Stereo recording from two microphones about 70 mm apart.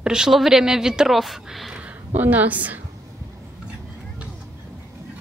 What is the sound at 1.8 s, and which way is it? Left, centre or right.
A woman's voice, right.